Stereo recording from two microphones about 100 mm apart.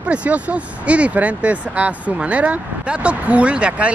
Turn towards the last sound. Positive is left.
turn(degrees=-10)  # may be behind; listen again after turning